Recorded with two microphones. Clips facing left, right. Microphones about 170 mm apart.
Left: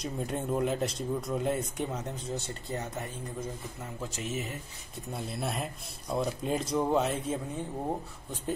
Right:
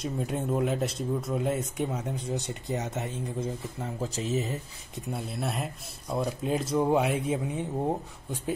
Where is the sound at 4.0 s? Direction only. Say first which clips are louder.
Right 6 dB; 35° right (ahead or behind).